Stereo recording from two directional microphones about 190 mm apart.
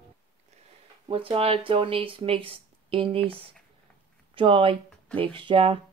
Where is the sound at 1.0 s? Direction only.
30° right (ahead or behind).